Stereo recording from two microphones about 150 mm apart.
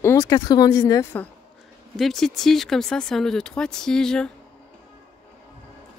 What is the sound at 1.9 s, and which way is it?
Speech, centre (ahead or behind).